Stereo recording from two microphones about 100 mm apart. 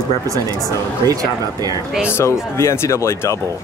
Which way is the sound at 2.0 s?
25° left (ahead or behind).